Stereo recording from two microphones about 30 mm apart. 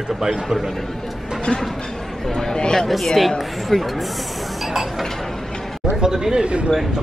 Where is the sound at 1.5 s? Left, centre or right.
Left.